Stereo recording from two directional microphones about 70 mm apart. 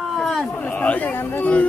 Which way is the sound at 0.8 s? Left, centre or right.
Left.